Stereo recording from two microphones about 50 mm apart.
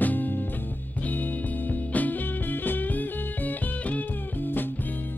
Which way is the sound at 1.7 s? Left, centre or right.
Left.